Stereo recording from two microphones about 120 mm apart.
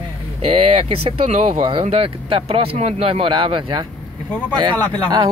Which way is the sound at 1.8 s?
55° right (ahead or behind).